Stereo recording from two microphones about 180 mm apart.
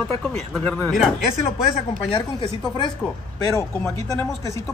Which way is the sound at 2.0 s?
30° left (ahead or behind).